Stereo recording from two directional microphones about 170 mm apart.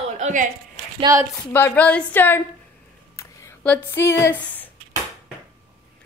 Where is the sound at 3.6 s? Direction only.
10° left (ahead or behind).